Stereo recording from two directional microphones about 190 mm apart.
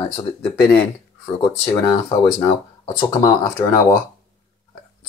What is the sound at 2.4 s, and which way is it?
Speech, 20° left (ahead or behind).